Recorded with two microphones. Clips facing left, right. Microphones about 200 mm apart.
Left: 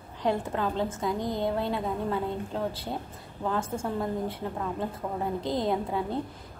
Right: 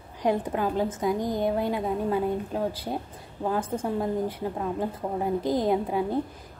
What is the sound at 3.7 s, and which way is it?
A woman's voice, 20° right (ahead or behind).